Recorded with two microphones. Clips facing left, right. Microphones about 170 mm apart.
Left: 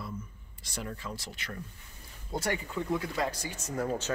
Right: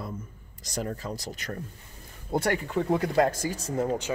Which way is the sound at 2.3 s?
65° right (ahead or behind).